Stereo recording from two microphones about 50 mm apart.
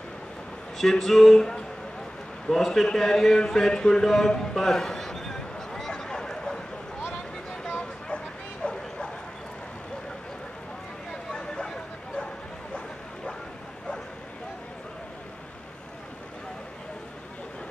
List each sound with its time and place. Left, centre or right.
0.7 s speech: centre
2.4 s a sound: centre
8.6 s bow-wow: centre
11.3 s bow-wow: centre